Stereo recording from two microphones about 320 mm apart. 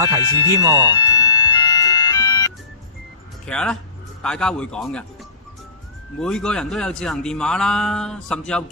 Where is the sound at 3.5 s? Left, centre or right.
Centre.